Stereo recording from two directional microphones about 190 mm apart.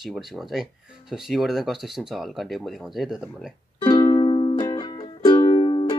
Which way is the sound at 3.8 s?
20° left (ahead or behind).